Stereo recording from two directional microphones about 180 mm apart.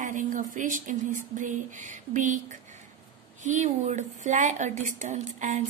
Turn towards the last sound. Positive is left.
turn(degrees=-40)  # may be behind; listen again after turning